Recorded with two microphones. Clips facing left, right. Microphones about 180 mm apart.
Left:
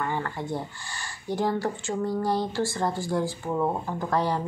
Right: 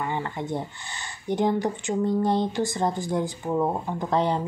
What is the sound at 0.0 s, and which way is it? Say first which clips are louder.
Speech: right 1 dB; 20° right (ahead or behind).